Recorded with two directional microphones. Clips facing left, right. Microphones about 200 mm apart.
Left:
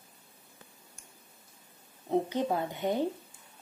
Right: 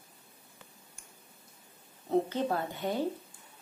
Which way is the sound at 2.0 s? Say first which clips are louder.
Even; 15° left (ahead or behind).